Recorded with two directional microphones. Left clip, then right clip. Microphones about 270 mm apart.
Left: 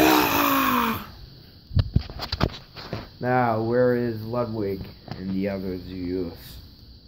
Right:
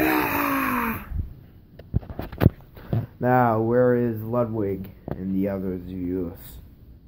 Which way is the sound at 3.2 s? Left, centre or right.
Right.